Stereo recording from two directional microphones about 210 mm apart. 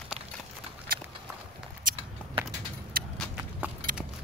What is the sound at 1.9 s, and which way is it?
Biting, 40° right (ahead or behind).